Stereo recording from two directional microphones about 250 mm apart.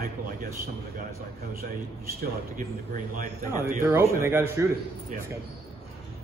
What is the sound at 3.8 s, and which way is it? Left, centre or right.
Speech, centre.